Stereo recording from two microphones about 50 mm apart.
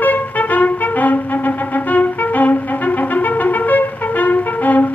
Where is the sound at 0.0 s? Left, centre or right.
Left.